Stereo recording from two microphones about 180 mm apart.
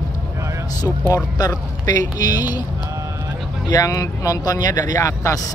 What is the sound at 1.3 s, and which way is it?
Speech, 20° left (ahead or behind).